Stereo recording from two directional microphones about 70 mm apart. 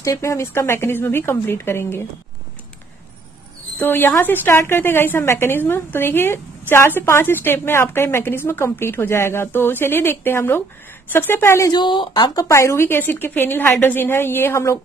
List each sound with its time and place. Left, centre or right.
0.0 s a woman's voice: left
3.7 s a woman's voice: left
11.7 s speech: left
12.4 s a woman's voice: left